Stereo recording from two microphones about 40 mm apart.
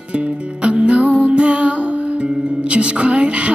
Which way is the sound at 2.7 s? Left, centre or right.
Right.